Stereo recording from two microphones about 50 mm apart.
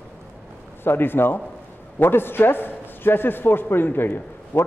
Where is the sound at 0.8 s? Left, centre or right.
Left.